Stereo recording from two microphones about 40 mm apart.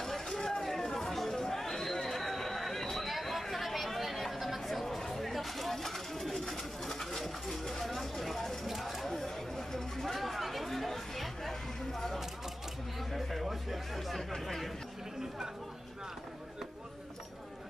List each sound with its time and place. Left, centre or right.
0.0 s chatter: centre
13.1 s music: centre